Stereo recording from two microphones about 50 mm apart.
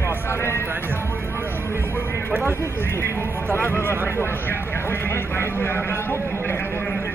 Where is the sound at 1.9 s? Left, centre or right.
Left.